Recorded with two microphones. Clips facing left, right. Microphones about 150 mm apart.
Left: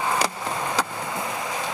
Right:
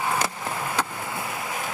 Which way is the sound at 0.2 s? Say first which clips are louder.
Left 2 dB; 20° left (ahead or behind).